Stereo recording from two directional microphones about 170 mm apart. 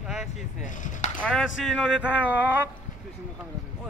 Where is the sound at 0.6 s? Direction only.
50° left (ahead or behind).